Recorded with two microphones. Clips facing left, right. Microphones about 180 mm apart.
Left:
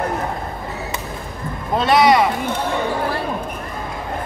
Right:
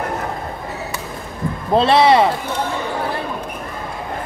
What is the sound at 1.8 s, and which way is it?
Speech, 30° right (ahead or behind).